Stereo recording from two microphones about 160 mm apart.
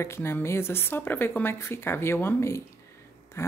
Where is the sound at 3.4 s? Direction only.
15° left (ahead or behind).